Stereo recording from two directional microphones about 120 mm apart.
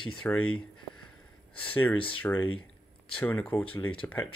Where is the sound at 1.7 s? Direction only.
15° left (ahead or behind).